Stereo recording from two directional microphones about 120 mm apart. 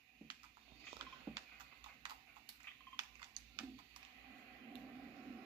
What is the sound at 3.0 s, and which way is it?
Typing, 35° right (ahead or behind).